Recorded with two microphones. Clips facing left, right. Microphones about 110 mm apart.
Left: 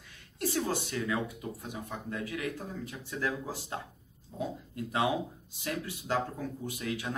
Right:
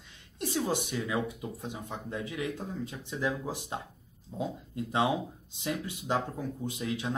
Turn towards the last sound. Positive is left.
turn(degrees=-20)  # may be behind; listen again after turning